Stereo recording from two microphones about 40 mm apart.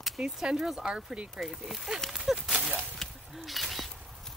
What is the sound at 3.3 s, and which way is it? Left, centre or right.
Single-lens reflex camera, centre.